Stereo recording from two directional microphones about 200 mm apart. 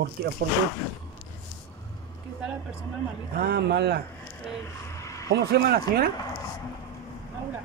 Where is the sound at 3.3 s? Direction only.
55° right (ahead or behind).